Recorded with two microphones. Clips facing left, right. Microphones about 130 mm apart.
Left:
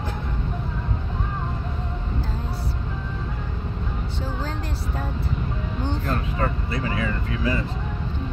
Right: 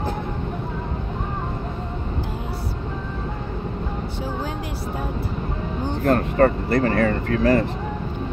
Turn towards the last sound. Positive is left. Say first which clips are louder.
# right 7 dB
turn(degrees=-55)  # may be behind; listen again after turning